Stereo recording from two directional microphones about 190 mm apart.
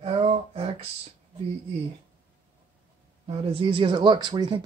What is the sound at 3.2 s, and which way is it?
Speech, 30° right (ahead or behind).